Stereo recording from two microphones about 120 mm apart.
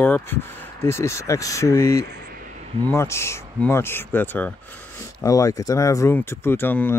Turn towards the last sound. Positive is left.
turn(degrees=15)  # may be behind; listen again after turning